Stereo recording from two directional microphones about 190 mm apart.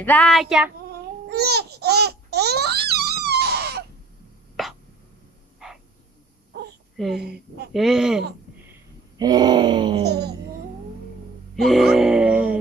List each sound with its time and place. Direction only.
0.0 s music: 10° left (ahead or behind)
1.3 s babbling: 60° right (ahead or behind)
7.2 s speech: 60° right (ahead or behind)
7.7 s music: centre (ahead or behind)
9.2 s groan: 20° right (ahead or behind)
10.0 s speech: 60° right (ahead or behind)
11.5 s music: centre (ahead or behind)